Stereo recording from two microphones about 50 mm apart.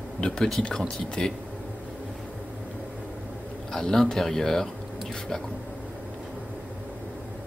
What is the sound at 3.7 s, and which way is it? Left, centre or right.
Speech, centre.